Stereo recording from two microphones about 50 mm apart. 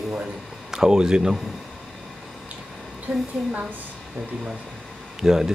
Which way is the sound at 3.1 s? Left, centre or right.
Right.